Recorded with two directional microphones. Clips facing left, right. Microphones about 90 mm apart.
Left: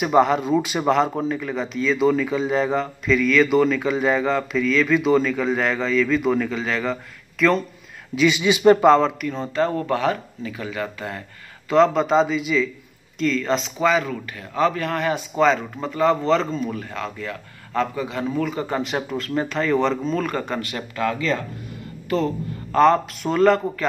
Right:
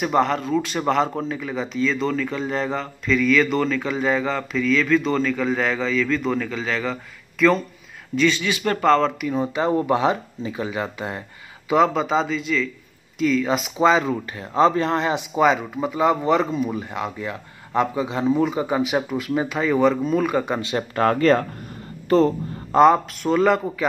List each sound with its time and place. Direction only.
0.0 s speech: 5° left (ahead or behind)
8.2 s speech: 15° left (ahead or behind)
9.2 s speech: 15° right (ahead or behind)
11.7 s speech: 5° right (ahead or behind)
13.2 s speech: 5° right (ahead or behind)
13.7 s speech: 25° right (ahead or behind)
20.9 s speech: 45° right (ahead or behind)
22.1 s speech: 35° right (ahead or behind)
22.7 s speech: 15° right (ahead or behind)
23.2 s speech: centre (ahead or behind)